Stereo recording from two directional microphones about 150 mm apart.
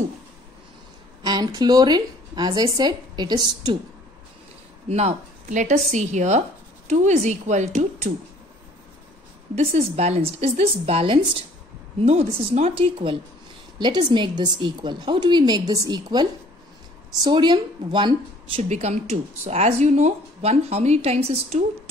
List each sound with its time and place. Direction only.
1.2 s speech: 25° right (ahead or behind)
4.8 s speech: 45° right (ahead or behind)
9.6 s a woman's voice: 45° right (ahead or behind)
18.6 s speech: 45° right (ahead or behind)